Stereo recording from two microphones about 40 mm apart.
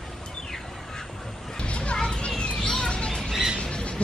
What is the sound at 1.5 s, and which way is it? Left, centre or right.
Children playing, left.